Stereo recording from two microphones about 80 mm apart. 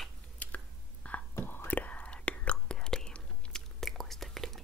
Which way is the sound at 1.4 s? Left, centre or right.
Left.